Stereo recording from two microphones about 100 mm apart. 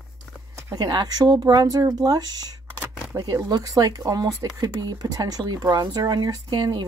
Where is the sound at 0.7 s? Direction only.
45° right (ahead or behind).